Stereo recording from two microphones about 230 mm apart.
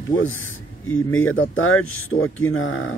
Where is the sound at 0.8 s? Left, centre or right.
Left.